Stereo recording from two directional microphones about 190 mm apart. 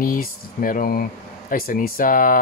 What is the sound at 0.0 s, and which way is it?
Speech, 45° left (ahead or behind).